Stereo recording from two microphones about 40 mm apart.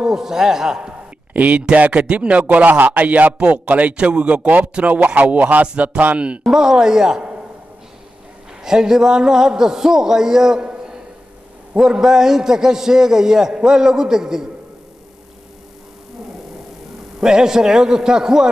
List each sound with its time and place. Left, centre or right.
0.0 s a man's voice: centre
0.9 s speech: right
6.4 s a woman's voice: centre
8.6 s a man's voice: centre
11.7 s a man's voice: centre
17.2 s a man's voice: centre